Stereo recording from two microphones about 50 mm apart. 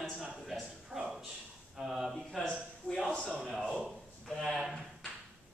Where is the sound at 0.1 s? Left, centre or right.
Centre.